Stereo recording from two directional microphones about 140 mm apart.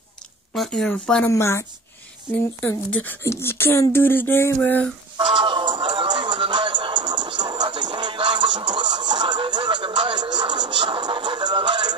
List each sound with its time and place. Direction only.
0.5 s a woman's voice: 5° left (ahead or behind)
1.3 s a woman's voice: 20° left (ahead or behind)
5.3 s music: 35° right (ahead or behind)